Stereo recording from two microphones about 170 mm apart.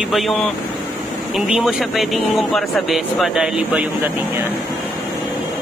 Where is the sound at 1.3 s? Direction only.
Centre (ahead or behind).